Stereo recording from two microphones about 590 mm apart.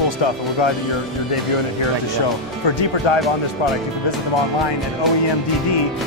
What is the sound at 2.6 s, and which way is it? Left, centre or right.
Speech, left.